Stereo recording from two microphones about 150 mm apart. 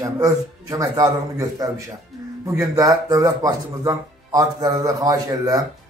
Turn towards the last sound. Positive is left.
turn(degrees=-25)  # may be behind; listen again after turning